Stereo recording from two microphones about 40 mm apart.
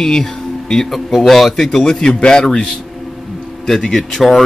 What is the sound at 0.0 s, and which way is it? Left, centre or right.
Speech, centre.